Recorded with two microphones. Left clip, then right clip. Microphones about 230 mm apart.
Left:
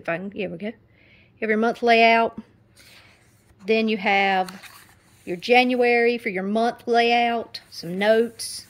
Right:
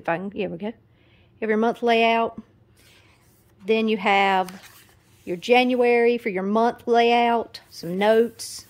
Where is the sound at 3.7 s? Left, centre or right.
Right.